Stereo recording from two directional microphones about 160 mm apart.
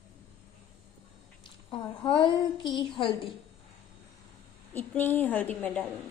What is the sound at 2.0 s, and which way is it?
A woman's voice, 30° left (ahead or behind).